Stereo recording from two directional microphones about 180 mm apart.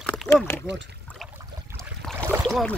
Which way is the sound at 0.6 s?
75° right (ahead or behind).